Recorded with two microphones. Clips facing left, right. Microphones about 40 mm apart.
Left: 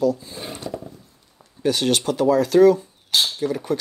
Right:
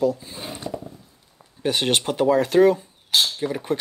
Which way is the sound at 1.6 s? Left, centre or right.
Right.